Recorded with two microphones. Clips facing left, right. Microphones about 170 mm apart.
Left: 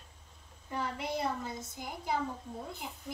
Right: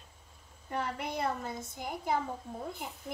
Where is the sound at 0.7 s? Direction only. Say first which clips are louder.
Even; 55° right (ahead or behind).